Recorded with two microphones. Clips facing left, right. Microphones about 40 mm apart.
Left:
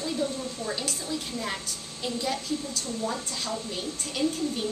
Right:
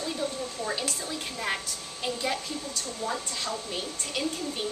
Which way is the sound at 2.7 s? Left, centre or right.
Centre.